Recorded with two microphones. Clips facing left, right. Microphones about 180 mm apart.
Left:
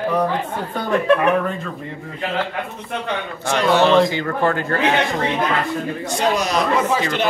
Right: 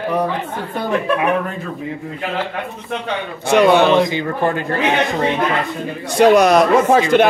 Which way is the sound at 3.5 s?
60° right (ahead or behind).